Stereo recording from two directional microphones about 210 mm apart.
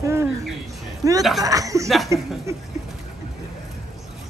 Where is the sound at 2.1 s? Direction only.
15° right (ahead or behind).